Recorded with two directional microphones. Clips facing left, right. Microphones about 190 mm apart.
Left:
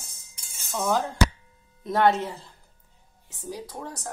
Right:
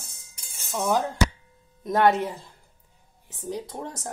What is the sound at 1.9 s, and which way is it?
A woman's voice, 15° right (ahead or behind).